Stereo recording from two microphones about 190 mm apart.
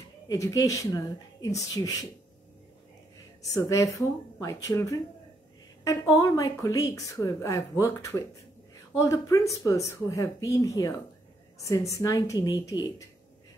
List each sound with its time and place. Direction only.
0.3 s speech: 15° left (ahead or behind)
3.5 s speech: 15° left (ahead or behind)